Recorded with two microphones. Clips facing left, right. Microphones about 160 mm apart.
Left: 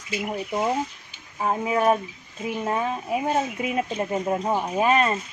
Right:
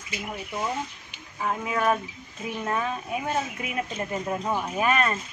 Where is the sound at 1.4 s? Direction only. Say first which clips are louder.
Left 4 dB; 30° left (ahead or behind).